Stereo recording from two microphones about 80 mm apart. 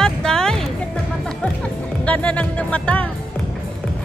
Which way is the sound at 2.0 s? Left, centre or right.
Centre.